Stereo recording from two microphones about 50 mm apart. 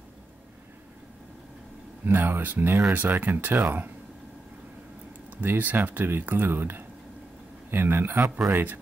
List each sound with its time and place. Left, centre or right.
2.0 s speech: right
5.4 s speech: right